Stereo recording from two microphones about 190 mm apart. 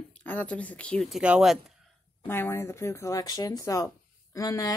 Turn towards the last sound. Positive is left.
turn(degrees=20)  # may be behind; listen again after turning